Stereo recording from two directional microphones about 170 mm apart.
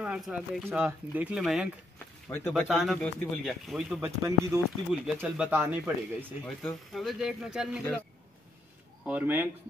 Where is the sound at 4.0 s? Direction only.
20° right (ahead or behind).